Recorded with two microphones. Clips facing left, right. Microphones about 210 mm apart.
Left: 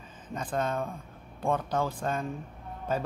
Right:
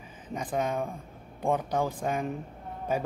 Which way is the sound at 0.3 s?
15° right (ahead or behind).